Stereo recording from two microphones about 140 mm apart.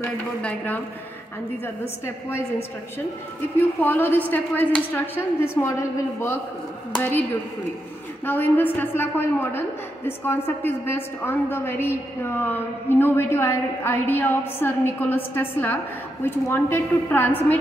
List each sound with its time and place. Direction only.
0.4 s a woman's voice: 10° left (ahead or behind)
2.0 s a woman's voice: 15° left (ahead or behind)
3.8 s a woman's voice: 15° left (ahead or behind)
8.3 s a woman's voice: 15° left (ahead or behind)